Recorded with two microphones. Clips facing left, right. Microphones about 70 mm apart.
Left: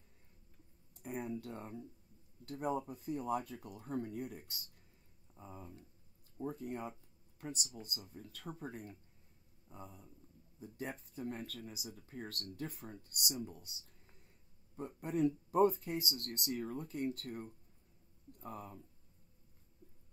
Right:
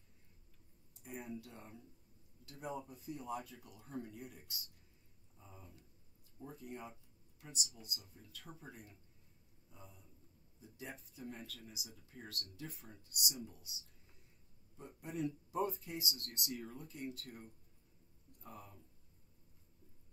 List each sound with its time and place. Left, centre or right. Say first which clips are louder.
1.0 s speech: left 6 dB; left
15.0 s speech: left 7 dB; left